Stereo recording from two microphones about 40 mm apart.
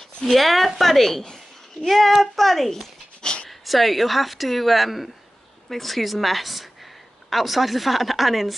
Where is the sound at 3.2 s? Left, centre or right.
Centre.